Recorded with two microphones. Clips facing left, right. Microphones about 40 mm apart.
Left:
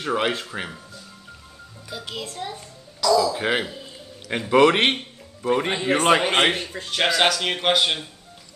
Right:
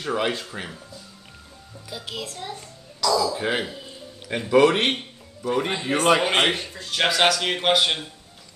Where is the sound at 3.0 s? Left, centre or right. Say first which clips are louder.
Left 3 dB; centre.